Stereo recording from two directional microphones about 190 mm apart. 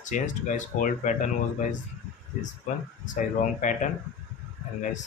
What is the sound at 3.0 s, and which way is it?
Speech, 40° left (ahead or behind).